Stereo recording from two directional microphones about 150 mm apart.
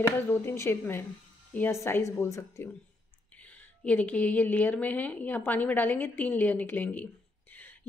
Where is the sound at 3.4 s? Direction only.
10° left (ahead or behind).